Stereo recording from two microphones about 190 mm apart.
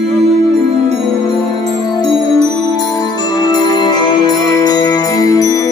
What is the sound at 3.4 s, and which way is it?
Music, 20° left (ahead or behind).